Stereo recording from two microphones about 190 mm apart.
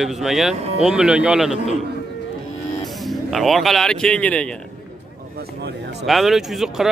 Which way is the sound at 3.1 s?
Centre (ahead or behind).